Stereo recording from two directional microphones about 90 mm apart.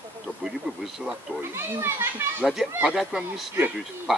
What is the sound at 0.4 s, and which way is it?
Speech, 5° right (ahead or behind).